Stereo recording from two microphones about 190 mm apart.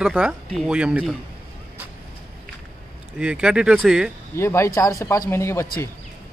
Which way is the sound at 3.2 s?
5° right (ahead or behind).